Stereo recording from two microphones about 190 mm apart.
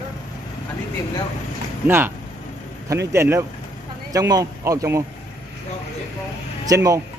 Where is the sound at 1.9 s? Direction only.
10° right (ahead or behind).